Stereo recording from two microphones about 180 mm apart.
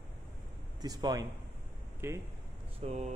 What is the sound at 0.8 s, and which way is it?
Speech, 20° right (ahead or behind).